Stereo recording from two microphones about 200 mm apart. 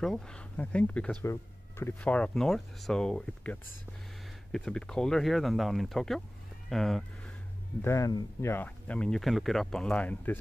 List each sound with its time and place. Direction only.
0.0 s speech: 5° left (ahead or behind)
7.8 s speech: 15° left (ahead or behind)